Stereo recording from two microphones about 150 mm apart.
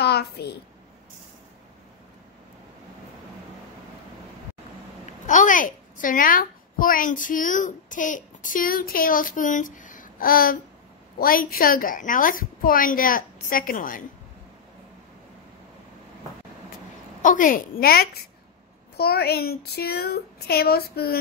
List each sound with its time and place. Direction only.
0.0 s a child's voice: 90° left
5.0 s a woman's voice: 55° left (ahead or behind)
17.2 s a woman's voice: 60° left (ahead or behind); by 21.2 s 90° left